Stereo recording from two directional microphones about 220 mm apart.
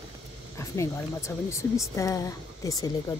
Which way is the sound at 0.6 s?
15° left (ahead or behind).